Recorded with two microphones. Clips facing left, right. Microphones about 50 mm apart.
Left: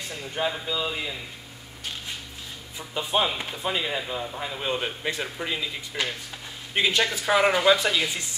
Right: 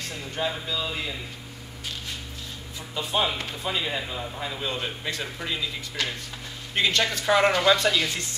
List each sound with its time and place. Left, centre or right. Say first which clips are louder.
0.5 s speech: left 1 dB; centre
2.9 s speech: left 1 dB; centre